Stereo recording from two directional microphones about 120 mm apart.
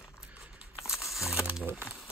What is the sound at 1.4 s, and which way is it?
Speech, 15° right (ahead or behind).